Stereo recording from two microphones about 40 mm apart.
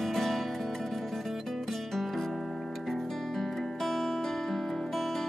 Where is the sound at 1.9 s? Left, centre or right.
Centre.